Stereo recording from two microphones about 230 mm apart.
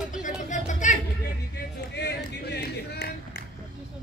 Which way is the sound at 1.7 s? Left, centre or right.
Left.